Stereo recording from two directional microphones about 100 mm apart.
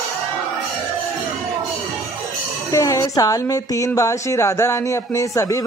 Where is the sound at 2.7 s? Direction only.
35° left (ahead or behind).